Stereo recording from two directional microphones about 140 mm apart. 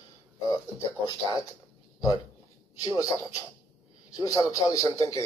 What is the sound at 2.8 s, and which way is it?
Speech, 25° left (ahead or behind).